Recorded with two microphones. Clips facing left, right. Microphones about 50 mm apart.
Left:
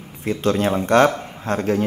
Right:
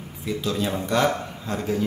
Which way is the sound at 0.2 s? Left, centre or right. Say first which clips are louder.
Left 6 dB; left.